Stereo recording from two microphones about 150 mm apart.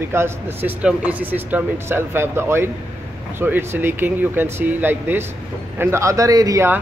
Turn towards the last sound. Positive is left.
turn(degrees=-20)  # may be behind; listen again after turning